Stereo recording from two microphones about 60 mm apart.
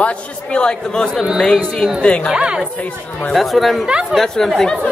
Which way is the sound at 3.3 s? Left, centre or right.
Centre.